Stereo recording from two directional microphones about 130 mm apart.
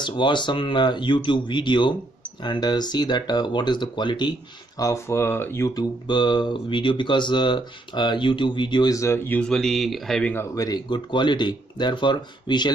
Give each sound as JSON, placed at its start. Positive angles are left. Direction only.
{"t": 0.0, "sound": "speech", "side_deg": 35}
{"t": 4.7, "sound": "speech", "side_deg": 25}
{"t": 5.8, "sound": "speech", "side_deg": 35}
{"t": 8.9, "sound": "speech", "side_deg": 20}
{"t": 9.4, "sound": "speech", "side_deg": 5}
{"t": 10.3, "sound": "speech", "side_deg": 25}